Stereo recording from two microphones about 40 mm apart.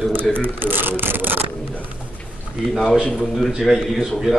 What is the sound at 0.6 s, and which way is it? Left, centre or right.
Speech, right.